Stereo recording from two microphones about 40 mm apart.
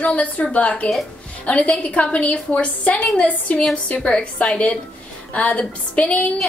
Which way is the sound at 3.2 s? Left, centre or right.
Left.